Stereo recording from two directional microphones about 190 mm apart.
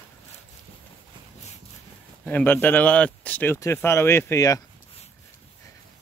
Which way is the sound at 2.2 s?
10° left (ahead or behind).